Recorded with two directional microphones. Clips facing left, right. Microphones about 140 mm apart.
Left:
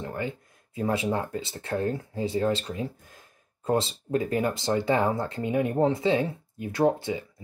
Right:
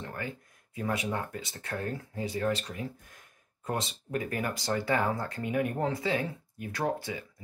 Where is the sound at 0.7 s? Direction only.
30° left (ahead or behind).